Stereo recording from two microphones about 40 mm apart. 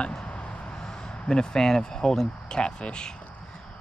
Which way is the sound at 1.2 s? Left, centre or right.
Centre.